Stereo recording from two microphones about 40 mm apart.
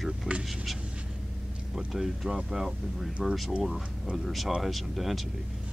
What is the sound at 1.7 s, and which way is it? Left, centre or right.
Speech, centre.